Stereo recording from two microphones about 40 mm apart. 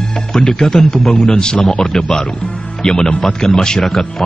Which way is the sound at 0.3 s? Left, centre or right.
Centre.